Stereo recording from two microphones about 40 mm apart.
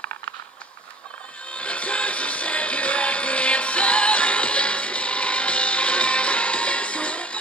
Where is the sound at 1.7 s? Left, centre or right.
Left.